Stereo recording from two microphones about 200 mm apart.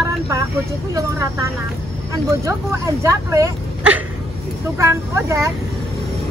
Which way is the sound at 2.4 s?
15° right (ahead or behind).